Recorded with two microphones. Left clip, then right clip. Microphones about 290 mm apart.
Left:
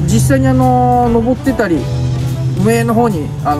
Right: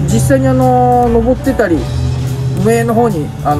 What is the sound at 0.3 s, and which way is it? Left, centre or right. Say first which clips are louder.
Speech: right 2 dB; left.